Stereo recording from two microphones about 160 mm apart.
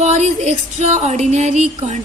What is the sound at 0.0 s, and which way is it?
A woman's voice, 45° right (ahead or behind).